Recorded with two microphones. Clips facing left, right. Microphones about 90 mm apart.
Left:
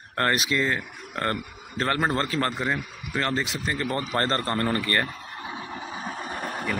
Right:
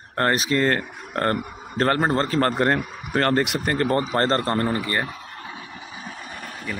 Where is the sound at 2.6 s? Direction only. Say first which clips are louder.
Right 7 dB; 65° right (ahead or behind).